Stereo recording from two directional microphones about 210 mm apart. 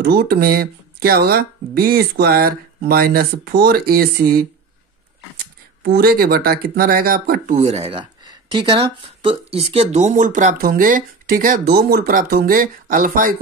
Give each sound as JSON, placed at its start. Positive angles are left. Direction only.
{"t": 0.0, "sound": "speech", "side_deg": -50}
{"t": 5.8, "sound": "speech", "side_deg": -45}